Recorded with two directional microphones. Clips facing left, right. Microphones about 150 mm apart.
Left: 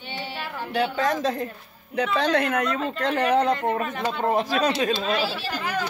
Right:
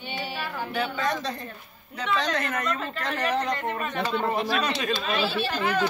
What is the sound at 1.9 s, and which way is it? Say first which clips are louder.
Speech: left 5 dB; 70° left (ahead or behind).